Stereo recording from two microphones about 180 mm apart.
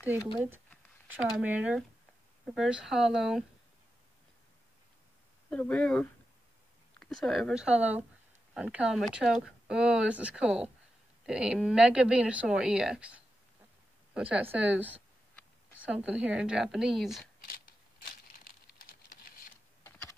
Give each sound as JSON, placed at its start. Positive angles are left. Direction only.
{"t": 0.0, "sound": "speech", "side_deg": -10}
{"t": 5.5, "sound": "speech", "side_deg": 5}
{"t": 14.9, "sound": "a sound", "side_deg": 10}
{"t": 15.8, "sound": "speech", "side_deg": -5}
{"t": 17.5, "sound": "crumpling", "side_deg": 50}
{"t": 19.8, "sound": "computer keyboard", "side_deg": 15}